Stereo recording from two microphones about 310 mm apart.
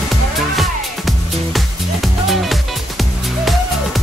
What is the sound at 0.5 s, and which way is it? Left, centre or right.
Music, centre.